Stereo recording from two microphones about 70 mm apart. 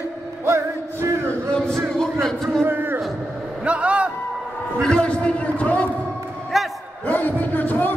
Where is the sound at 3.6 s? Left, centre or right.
Centre.